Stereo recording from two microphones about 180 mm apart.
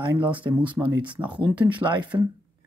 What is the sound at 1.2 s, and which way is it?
Speech, 10° right (ahead or behind).